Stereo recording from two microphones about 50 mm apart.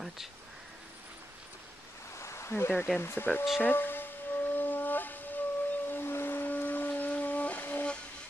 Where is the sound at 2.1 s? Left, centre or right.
Left.